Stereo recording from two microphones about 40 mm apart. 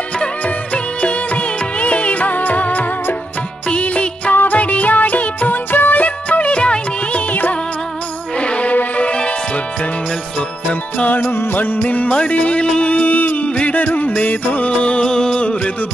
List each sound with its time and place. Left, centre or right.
1.0 s music: left
4.3 s music: left
5.7 s music: left
8.4 s music: left
10.7 s music: left
11.5 s music: left
11.8 s speech: left
12.8 s a sound: left
13.7 s music: left; by 15.4 s centre